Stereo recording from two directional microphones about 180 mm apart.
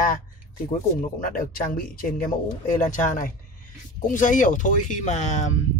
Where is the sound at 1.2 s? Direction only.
50° left (ahead or behind).